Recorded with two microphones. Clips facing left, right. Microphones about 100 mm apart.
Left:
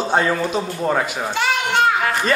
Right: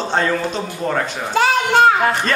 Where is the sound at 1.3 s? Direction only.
40° right (ahead or behind).